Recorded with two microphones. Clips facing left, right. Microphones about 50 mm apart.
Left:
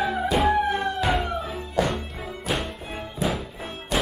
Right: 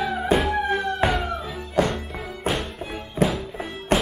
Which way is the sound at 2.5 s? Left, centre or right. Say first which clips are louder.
Right 2 dB; right.